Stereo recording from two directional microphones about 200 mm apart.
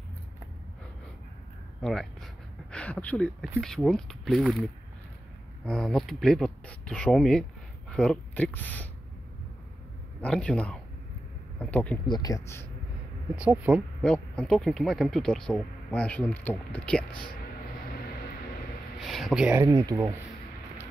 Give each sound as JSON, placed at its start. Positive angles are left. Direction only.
{"t": 1.8, "sound": "speech", "side_deg": 0}
{"t": 5.7, "sound": "speech", "side_deg": 0}
{"t": 10.2, "sound": "speech", "side_deg": 5}
{"t": 12.1, "sound": "speech", "side_deg": 20}
{"t": 13.4, "sound": "speech", "side_deg": -5}
{"t": 14.0, "sound": "speech", "side_deg": 5}
{"t": 18.9, "sound": "speech", "side_deg": 0}
{"t": 19.6, "sound": "speech", "side_deg": -15}